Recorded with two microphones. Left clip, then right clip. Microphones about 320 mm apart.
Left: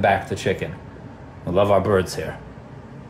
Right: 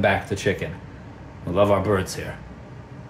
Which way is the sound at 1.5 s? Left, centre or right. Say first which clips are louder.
Left 2 dB; centre.